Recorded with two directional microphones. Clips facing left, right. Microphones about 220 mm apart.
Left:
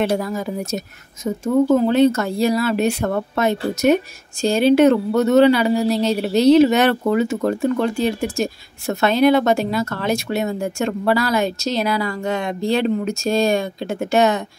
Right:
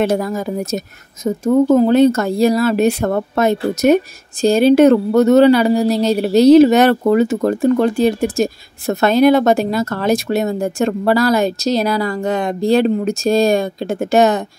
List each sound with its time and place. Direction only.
0.1 s speech: 45° right (ahead or behind)